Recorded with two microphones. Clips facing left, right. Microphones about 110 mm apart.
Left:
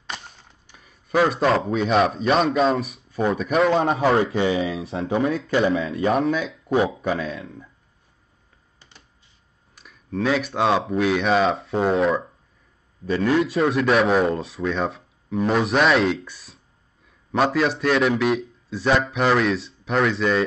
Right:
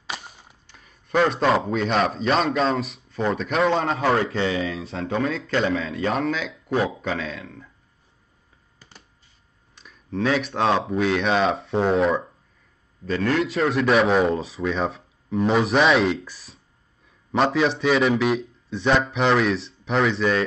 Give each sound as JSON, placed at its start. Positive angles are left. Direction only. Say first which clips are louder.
{"t": 0.0, "sound": "a sound", "louder": "right 1 dB", "side_deg": -5}
{"t": 0.7, "sound": "a man's voice", "louder": "left 1 dB", "side_deg": 5}
{"t": 4.2, "sound": "speech", "louder": "left 3 dB", "side_deg": 15}
{"t": 5.5, "sound": "speech", "louder": "left 3 dB", "side_deg": 15}
{"t": 9.8, "sound": "speech", "louder": "even", "side_deg": 5}
{"t": 13.0, "sound": "speech", "louder": "left 2 dB", "side_deg": 10}
{"t": 13.4, "sound": "speech", "louder": "left 2 dB", "side_deg": 0}